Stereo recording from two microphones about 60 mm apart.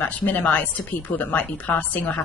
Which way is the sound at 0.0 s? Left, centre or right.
Left.